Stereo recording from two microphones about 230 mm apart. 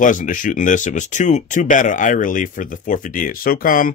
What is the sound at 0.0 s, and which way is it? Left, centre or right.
Speech, left.